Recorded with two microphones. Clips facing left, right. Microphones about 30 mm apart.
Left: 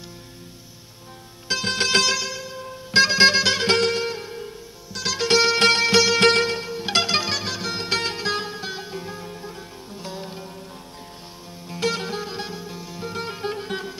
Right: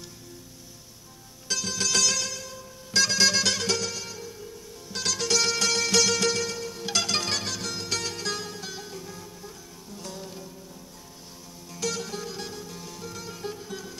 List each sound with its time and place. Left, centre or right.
1.7 s music: left
2.1 s music: left
3.7 s music: left
5.0 s music: left
6.1 s music: left
7.7 s music: left
11.7 s music: left
13.0 s music: left